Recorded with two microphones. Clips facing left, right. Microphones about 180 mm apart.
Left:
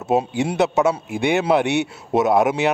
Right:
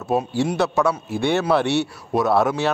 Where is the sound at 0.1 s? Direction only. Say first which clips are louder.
Left 1 dB; 20° left (ahead or behind).